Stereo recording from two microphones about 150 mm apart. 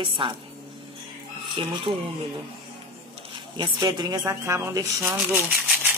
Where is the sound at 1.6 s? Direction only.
40° right (ahead or behind).